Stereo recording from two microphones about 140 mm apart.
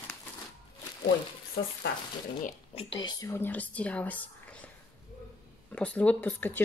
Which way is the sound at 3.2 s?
15° left (ahead or behind).